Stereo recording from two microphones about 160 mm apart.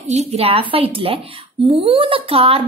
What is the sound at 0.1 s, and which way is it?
Speech, 45° right (ahead or behind).